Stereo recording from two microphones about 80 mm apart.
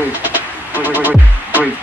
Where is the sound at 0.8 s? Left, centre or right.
Right.